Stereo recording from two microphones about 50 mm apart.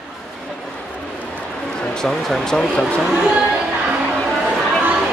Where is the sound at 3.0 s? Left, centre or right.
Centre.